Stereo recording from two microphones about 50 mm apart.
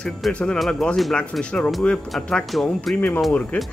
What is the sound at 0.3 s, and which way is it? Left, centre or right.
Speech, left.